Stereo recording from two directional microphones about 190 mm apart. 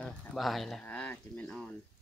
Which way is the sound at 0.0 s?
Centre (ahead or behind).